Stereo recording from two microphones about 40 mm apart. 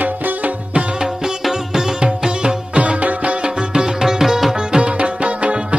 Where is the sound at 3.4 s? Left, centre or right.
Centre.